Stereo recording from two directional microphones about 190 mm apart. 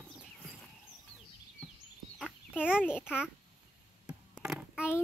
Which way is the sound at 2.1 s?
10° left (ahead or behind).